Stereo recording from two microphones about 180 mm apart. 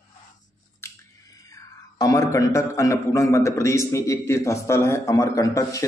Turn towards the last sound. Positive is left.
turn(degrees=15)  # may be behind; listen again after turning